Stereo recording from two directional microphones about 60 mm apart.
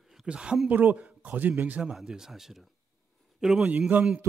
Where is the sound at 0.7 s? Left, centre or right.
Right.